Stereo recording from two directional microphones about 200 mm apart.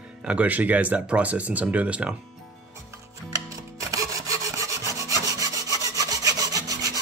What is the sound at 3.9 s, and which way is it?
Sawing, 15° right (ahead or behind).